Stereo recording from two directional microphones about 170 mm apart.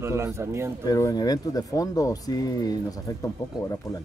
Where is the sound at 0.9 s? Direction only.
20° left (ahead or behind).